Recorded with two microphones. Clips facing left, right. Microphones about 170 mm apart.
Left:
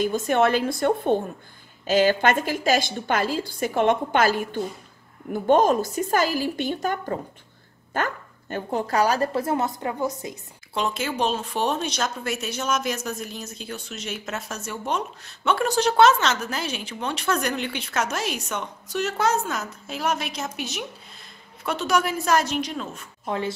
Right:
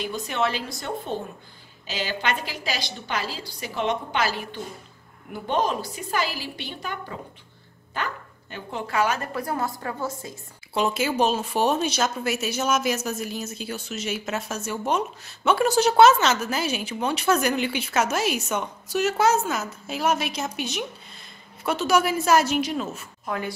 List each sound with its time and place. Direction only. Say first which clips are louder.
0.0 s a woman's voice: left 6 dB; 50° left (ahead or behind); by 10.1 s 20° left (ahead or behind)
10.7 s speech: right 3 dB; 5° right (ahead or behind)
23.2 s speech: left 3 dB; 25° left (ahead or behind)